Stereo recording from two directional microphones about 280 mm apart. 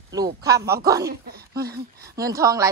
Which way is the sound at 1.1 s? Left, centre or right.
Right.